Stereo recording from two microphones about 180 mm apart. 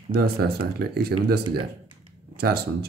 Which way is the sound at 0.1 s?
60° right (ahead or behind).